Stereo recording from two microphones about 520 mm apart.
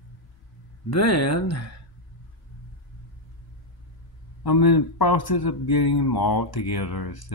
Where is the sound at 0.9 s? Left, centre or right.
Left.